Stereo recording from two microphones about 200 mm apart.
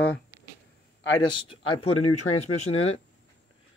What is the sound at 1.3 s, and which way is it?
Speech, 25° left (ahead or behind).